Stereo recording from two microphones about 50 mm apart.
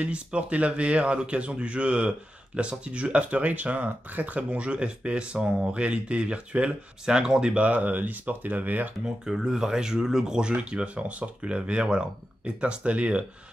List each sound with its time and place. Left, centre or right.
0.0 s speech: right
9.0 s speech: centre